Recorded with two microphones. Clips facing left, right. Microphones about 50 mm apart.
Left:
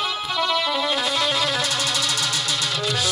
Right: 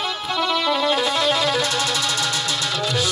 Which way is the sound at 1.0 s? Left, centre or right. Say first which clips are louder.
Right 3 dB; centre.